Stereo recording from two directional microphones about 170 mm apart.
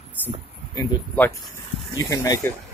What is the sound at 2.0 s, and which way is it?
Speech, 20° left (ahead or behind).